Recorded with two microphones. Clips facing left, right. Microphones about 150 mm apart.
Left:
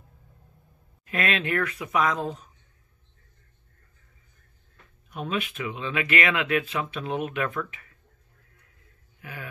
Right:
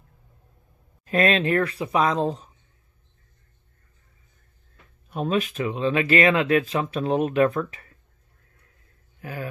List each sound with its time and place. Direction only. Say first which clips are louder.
1.0 s speech: right 7 dB; 35° right (ahead or behind)
5.1 s speech: right 6 dB; 35° right (ahead or behind)
9.2 s speech: right 7 dB; 35° right (ahead or behind)